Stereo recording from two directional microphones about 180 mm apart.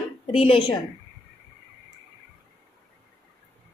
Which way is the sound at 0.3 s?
30° left (ahead or behind).